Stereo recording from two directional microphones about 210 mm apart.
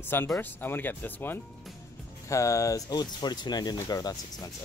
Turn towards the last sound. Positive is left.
turn(degrees=20)  # may be behind; listen again after turning